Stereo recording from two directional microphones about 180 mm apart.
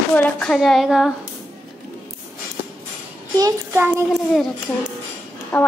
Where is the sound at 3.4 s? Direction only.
15° right (ahead or behind).